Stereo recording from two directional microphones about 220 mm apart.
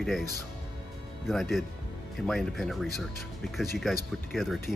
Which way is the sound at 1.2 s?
Centre (ahead or behind).